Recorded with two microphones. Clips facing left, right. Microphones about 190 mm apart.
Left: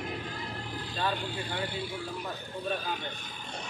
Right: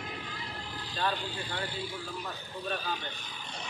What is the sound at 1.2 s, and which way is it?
Speech, 55° left (ahead or behind).